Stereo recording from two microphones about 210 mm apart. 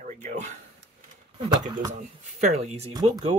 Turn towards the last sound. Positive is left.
turn(degrees=-20)  # may be behind; listen again after turning